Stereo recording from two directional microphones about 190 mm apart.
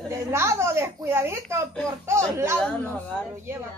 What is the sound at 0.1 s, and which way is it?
Speech, 15° right (ahead or behind).